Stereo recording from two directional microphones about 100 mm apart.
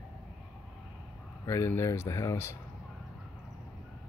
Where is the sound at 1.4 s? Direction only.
30° left (ahead or behind).